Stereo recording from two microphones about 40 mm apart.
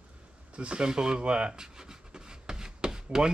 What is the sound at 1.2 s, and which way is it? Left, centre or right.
Rub, right.